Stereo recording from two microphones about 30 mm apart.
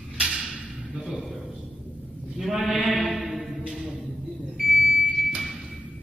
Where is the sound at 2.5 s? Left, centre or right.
Centre.